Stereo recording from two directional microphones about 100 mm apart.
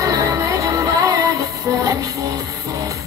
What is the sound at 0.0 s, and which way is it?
Music, 35° right (ahead or behind).